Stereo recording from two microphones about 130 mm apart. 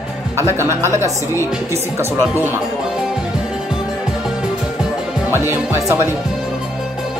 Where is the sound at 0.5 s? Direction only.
20° right (ahead or behind).